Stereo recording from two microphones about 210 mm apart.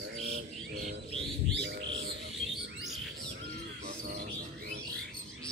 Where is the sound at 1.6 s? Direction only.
55° right (ahead or behind).